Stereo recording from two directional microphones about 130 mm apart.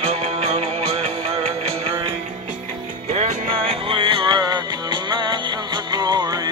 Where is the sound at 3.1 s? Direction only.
60° right (ahead or behind).